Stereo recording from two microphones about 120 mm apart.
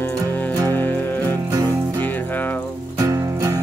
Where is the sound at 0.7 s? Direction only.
15° left (ahead or behind).